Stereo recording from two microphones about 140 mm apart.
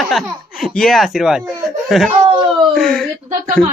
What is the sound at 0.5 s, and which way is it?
A woman's voice, 5° left (ahead or behind).